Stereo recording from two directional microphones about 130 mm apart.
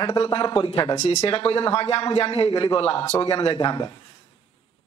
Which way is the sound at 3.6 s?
30° left (ahead or behind).